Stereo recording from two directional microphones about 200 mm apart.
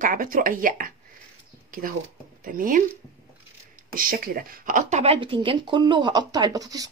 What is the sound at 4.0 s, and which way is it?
Speech, 45° right (ahead or behind).